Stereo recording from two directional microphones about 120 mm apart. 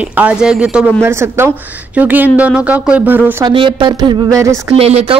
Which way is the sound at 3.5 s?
45° right (ahead or behind).